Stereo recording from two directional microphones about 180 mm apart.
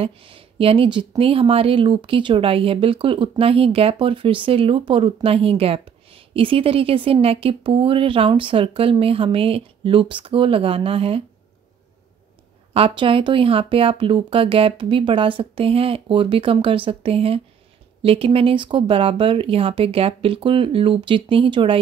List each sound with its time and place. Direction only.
0.0 s speech: 30° right (ahead or behind)
12.7 s speech: 30° right (ahead or behind)